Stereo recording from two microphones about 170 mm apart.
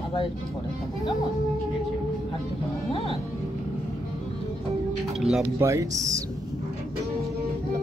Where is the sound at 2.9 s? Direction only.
35° left (ahead or behind).